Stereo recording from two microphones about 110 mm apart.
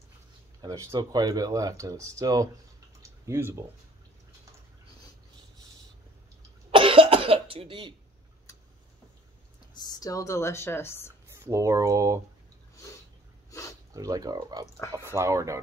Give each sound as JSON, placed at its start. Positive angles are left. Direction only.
{"t": 0.6, "sound": "speech", "side_deg": -40}
{"t": 3.0, "sound": "clicking", "side_deg": -25}
{"t": 6.7, "sound": "cough", "side_deg": -55}
{"t": 9.8, "sound": "speech", "side_deg": 35}
{"t": 11.4, "sound": "speech", "side_deg": -25}
{"t": 13.5, "sound": "a sound", "side_deg": 30}
{"t": 13.9, "sound": "speech", "side_deg": -35}